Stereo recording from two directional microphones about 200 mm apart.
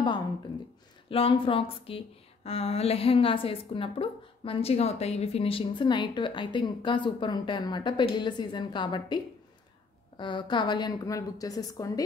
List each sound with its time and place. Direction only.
1.0 s a woman's voice: 25° left (ahead or behind)